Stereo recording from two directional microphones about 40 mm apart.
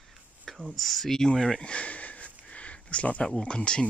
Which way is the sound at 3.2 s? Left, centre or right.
Left.